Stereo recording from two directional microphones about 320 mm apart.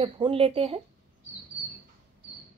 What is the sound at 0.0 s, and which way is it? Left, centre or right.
Speech, centre.